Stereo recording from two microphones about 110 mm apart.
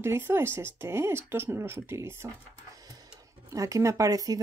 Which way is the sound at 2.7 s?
35° right (ahead or behind).